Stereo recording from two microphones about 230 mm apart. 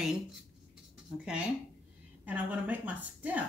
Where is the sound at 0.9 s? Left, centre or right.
Centre.